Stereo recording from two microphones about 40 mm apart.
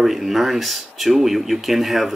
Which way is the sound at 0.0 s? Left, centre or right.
Centre.